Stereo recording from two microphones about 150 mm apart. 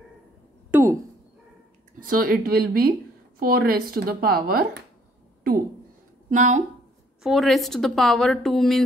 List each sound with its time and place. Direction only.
0.7 s a sound: 20° right (ahead or behind)
2.0 s speech: 70° right (ahead or behind); by 4.6 s 90° right
6.3 s a woman's voice: 55° right (ahead or behind)
7.2 s a woman's voice: centre (ahead or behind)